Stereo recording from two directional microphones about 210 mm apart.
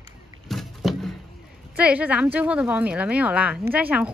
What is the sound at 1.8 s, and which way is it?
Speech, 5° right (ahead or behind).